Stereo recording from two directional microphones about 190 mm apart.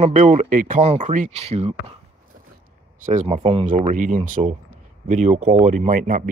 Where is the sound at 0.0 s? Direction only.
40° right (ahead or behind).